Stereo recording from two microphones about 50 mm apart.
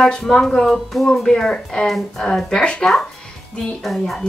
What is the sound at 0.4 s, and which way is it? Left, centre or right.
Speech, centre.